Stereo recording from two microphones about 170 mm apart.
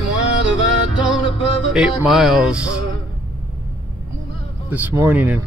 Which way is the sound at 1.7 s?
Centre (ahead or behind).